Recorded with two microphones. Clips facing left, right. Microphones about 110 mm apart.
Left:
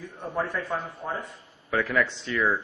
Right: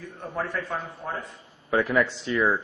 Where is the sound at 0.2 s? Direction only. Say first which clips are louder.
Left 1 dB; 15° left (ahead or behind).